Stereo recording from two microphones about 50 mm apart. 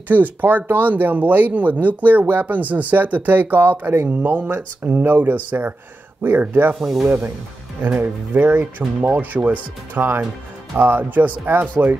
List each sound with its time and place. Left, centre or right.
0.1 s speech: right
4.1 s speech: right
6.8 s speech: centre
8.0 s speech: right